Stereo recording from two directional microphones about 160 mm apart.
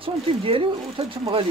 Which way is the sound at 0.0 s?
35° right (ahead or behind).